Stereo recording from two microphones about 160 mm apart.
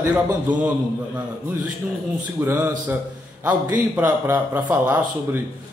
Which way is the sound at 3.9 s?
10° right (ahead or behind).